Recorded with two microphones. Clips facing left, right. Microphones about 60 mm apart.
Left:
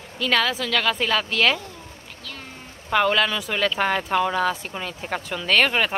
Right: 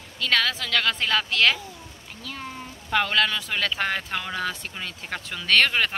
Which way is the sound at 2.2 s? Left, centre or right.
Centre.